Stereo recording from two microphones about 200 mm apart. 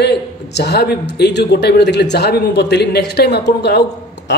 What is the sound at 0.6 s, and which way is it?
A man's voice, 55° left (ahead or behind).